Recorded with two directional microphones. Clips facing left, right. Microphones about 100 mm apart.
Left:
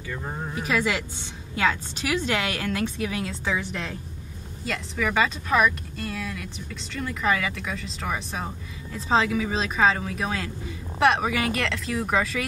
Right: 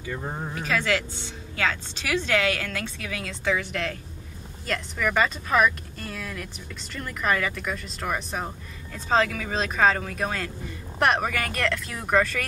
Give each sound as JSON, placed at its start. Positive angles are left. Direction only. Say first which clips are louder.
{"t": 0.7, "sound": "a woman's voice", "louder": "even", "side_deg": 10}
{"t": 3.4, "sound": "speech", "louder": "right 6 dB", "side_deg": 0}